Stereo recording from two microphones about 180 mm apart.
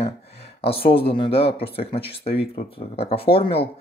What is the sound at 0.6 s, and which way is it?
Speech, 30° left (ahead or behind).